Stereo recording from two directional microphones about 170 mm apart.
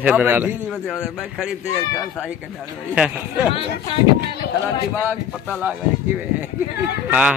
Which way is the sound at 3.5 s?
30° left (ahead or behind).